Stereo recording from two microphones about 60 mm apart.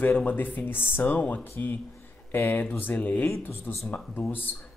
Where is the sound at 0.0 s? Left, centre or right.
Left.